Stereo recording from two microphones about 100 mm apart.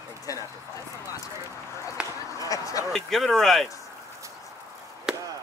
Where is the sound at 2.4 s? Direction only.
35° left (ahead or behind).